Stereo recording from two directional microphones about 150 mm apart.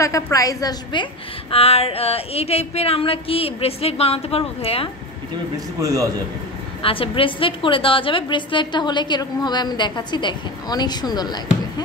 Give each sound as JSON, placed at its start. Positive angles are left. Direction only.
{"t": 0.0, "sound": "a woman's voice", "side_deg": 20}
{"t": 1.5, "sound": "a woman's voice", "side_deg": 40}
{"t": 5.8, "sound": "a man's voice", "side_deg": -20}
{"t": 6.8, "sound": "a woman's voice", "side_deg": 35}